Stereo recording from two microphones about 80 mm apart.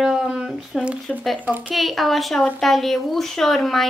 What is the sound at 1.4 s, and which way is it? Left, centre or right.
Speech, right.